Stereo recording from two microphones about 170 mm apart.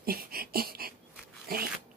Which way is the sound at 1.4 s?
60° right (ahead or behind).